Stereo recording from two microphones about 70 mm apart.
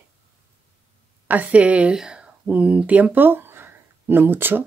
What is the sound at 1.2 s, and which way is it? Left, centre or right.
A woman's voice, right.